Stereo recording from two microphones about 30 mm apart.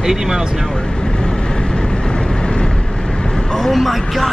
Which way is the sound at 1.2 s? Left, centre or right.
Left.